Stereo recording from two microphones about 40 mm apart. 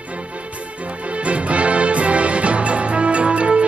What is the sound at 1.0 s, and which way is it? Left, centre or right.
Music, right.